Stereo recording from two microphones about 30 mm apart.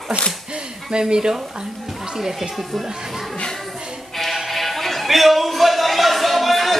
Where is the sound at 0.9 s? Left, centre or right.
Right.